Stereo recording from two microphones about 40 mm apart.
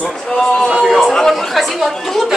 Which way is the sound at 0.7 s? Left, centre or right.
Centre.